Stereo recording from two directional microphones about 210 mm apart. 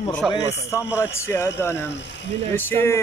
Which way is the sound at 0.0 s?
5° left (ahead or behind).